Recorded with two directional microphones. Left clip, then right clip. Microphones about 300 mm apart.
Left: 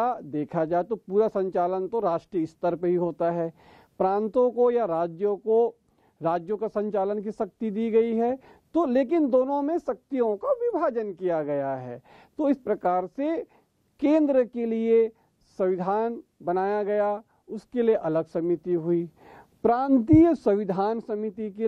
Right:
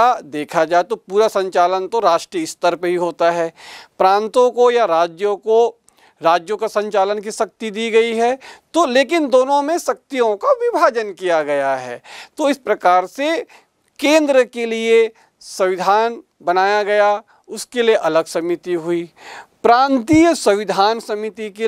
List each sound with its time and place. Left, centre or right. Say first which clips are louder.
0.0 s a man's voice: right 12 dB; centre
5.4 s speech: right 9 dB; right
6.2 s a man's voice: right 11 dB; centre